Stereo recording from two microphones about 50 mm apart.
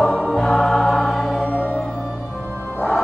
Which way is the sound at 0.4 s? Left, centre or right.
Centre.